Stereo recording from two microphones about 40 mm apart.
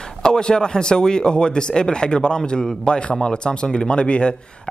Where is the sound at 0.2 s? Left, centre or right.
Centre.